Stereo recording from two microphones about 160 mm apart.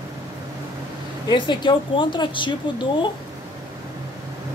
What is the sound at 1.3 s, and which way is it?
A woman's voice, 30° left (ahead or behind).